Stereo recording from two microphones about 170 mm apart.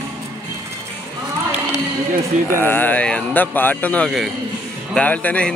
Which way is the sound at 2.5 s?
10° left (ahead or behind).